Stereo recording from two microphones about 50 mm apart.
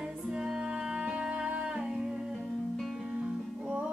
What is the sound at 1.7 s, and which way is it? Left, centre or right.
Music, centre.